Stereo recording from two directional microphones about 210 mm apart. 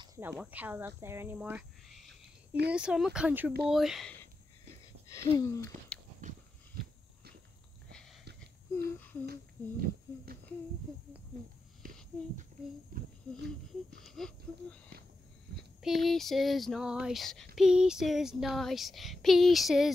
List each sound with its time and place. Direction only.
0.0 s speech: 15° right (ahead or behind)
5.1 s speech: 15° left (ahead or behind)
8.4 s a sound: 10° left (ahead or behind)
9.2 s speech: 45° right (ahead or behind)
11.8 s a sound: 40° right (ahead or behind)
14.0 s speech: centre (ahead or behind)
15.8 s speech: centre (ahead or behind)